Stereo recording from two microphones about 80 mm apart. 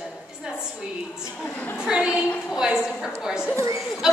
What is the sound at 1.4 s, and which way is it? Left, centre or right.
Speech, left.